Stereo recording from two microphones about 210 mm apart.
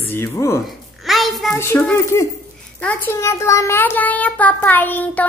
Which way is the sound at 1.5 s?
10° left (ahead or behind).